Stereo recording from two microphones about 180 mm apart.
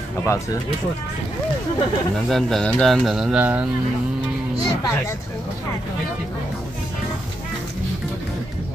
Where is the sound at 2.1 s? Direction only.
Centre (ahead or behind).